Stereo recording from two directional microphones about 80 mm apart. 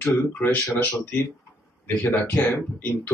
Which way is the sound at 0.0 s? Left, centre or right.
Left.